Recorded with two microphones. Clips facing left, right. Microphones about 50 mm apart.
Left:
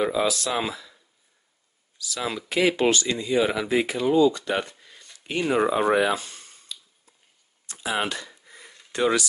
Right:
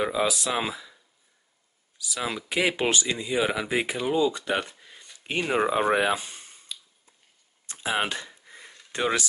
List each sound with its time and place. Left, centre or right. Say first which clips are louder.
0.0 s speech: left 2 dB; centre
2.0 s speech: left 1 dB; centre
5.9 s a sound: left 2 dB; centre
7.6 s speech: even; right
8.3 s sniff: even; centre
8.9 s speech: left 4 dB; right